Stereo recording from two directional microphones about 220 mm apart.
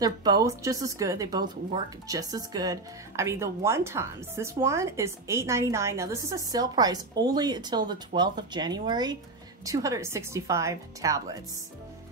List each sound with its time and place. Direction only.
0.0 s speech: 15° right (ahead or behind)